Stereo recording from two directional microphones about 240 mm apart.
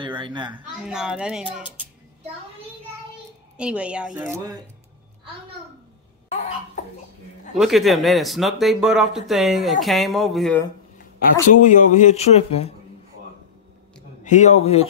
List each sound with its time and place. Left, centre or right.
0.0 s a woman's voice: centre
0.8 s speech: centre
3.5 s speech: centre
6.3 s speech: left
7.5 s speech: centre
11.5 s speech: left
14.2 s speech: left